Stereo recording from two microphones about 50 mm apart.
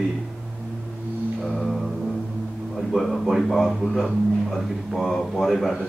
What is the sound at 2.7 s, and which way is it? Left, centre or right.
Speech, centre.